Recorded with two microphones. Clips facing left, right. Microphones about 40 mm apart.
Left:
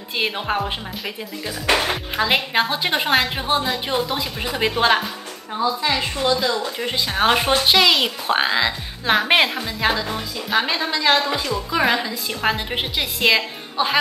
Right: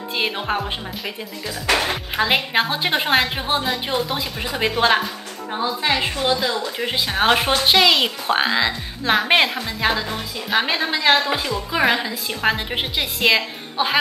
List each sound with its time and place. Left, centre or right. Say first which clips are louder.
0.2 s speech: left 1 dB; centre
5.5 s a woman's voice: even; right; by 13.4 s centre
13.8 s a woman's voice: even; centre